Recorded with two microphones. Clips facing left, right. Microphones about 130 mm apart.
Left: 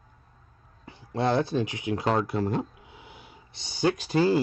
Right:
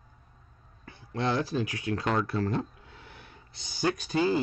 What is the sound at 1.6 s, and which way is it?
Speech, 20° left (ahead or behind).